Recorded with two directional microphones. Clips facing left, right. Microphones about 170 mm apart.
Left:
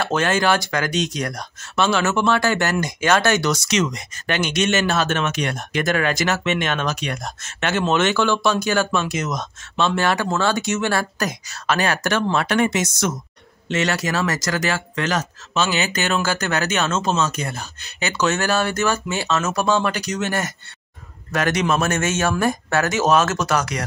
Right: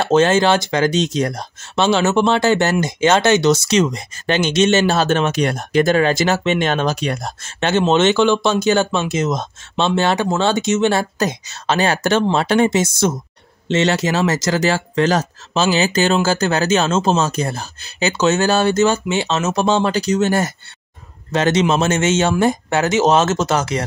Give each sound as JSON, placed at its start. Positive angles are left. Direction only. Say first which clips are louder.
{"t": 0.0, "sound": "speech", "louder": "right 6 dB", "side_deg": -25}